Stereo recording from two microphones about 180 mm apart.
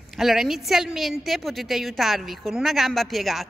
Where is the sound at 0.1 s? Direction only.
Centre (ahead or behind).